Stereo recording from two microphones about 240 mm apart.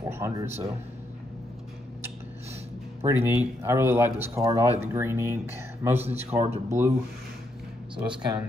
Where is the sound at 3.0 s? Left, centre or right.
Centre.